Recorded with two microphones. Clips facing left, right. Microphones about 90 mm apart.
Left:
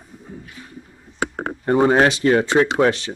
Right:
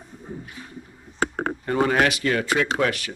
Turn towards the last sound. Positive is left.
turn(degrees=30)  # may be behind; listen again after turning